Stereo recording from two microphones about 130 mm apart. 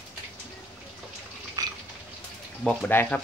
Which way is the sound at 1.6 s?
30° right (ahead or behind).